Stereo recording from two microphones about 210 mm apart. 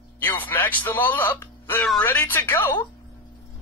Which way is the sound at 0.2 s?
10° left (ahead or behind).